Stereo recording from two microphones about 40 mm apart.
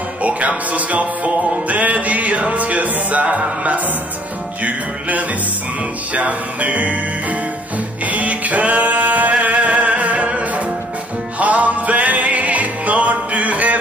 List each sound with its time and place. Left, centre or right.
0.2 s speech: right
0.7 s music: right